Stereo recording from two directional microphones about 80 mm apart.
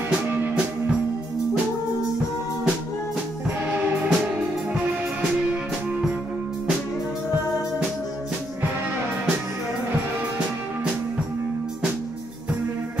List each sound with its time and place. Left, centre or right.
3.7 s music: centre